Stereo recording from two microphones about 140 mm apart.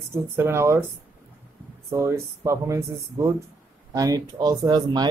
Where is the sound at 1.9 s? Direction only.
20° right (ahead or behind).